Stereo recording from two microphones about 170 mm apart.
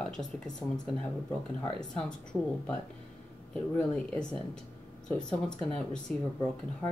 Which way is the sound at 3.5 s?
5° left (ahead or behind).